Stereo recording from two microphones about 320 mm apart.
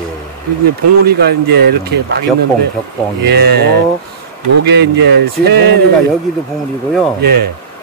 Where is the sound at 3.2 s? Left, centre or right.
Right.